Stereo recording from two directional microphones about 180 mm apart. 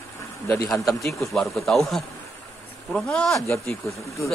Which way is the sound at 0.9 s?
Centre (ahead or behind).